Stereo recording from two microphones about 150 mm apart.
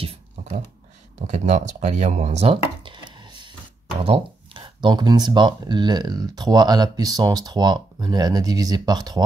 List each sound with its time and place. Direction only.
0.0 s computer keyboard: 40° right (ahead or behind)
1.2 s speech: 50° right (ahead or behind)
4.0 s speech: 40° right (ahead or behind)